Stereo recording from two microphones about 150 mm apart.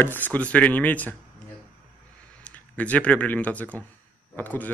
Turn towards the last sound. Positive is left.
turn(degrees=10)  # may be behind; listen again after turning